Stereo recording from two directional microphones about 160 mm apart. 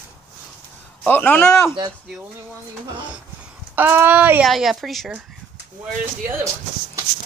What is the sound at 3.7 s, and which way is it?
Speech, 10° right (ahead or behind).